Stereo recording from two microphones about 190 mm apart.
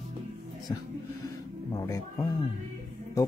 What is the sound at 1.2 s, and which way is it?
Music, 15° left (ahead or behind).